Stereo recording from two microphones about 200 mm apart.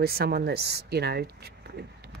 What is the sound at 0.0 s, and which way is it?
Speech, 50° right (ahead or behind).